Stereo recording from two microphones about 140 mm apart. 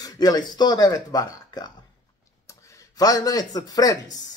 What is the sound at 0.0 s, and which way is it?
Speech, 25° left (ahead or behind).